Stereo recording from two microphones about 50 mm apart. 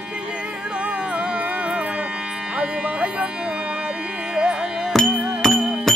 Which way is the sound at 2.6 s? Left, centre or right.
Right.